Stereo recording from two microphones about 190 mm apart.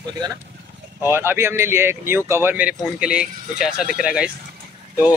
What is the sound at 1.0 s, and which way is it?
Speech, 10° right (ahead or behind).